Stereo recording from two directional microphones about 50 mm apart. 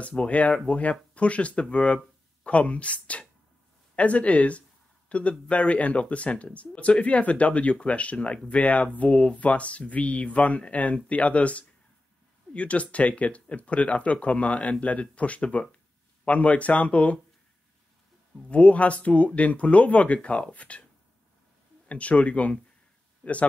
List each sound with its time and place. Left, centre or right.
0.2 s speech: left
18.5 s speech: left
21.8 s speech: left